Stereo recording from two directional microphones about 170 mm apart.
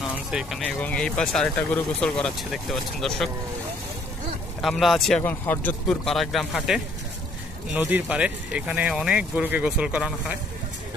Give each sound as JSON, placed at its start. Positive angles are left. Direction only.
{"t": 0.3, "sound": "speech", "side_deg": -5}
{"t": 4.6, "sound": "speech", "side_deg": 0}